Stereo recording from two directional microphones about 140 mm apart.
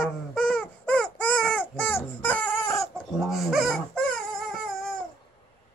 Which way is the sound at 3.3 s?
Centre (ahead or behind).